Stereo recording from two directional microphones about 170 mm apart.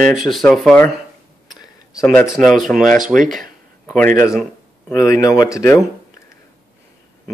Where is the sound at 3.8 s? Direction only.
10° left (ahead or behind).